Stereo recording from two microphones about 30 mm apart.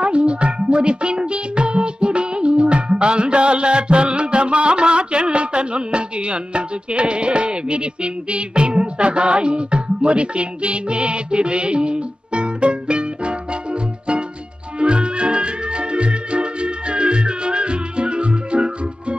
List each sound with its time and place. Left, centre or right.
0.0 s music: right